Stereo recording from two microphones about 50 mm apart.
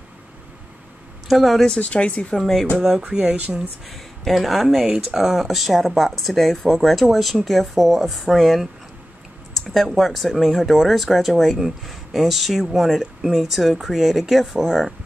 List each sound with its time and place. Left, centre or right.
1.3 s speech: centre
1.8 s speech: left
2.3 s speech: centre
2.8 s speech: centre
3.9 s speech: centre
9.9 s speech: centre